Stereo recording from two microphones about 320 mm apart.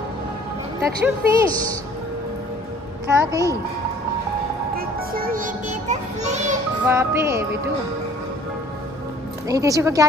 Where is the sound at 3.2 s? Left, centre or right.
Centre.